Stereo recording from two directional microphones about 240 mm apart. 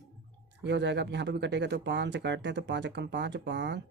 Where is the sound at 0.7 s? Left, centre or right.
Right.